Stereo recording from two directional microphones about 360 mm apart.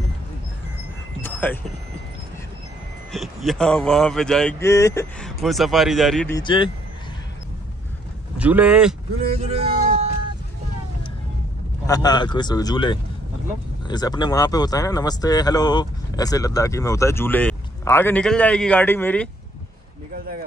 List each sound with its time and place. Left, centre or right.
1.2 s a sound: centre
3.1 s speech: centre
8.4 s speech: centre
9.2 s music: centre
11.8 s speech: centre